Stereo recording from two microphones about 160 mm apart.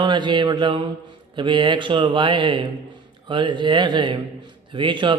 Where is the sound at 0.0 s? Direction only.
30° right (ahead or behind).